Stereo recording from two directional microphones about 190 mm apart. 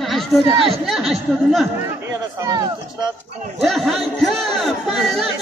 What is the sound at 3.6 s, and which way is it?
Chatter, centre (ahead or behind).